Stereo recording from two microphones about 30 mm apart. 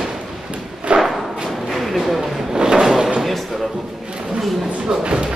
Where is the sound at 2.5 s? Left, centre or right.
Right.